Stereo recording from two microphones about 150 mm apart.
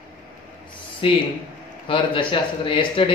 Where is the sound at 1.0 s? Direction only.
40° left (ahead or behind).